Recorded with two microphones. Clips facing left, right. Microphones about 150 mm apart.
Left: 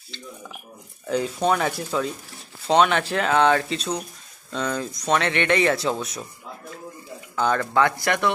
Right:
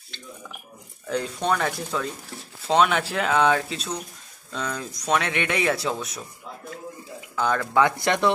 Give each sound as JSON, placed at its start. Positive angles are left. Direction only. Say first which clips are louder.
{"t": 1.0, "sound": "speech", "louder": "left 3 dB", "side_deg": 5}
{"t": 2.7, "sound": "speech", "louder": "left 2 dB", "side_deg": -5}
{"t": 7.3, "sound": "speech", "louder": "left 1 dB", "side_deg": 0}
{"t": 7.8, "sound": "speech", "louder": "right 3 dB", "side_deg": -25}